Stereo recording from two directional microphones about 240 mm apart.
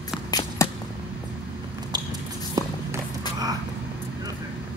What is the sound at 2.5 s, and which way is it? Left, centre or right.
Walk, centre.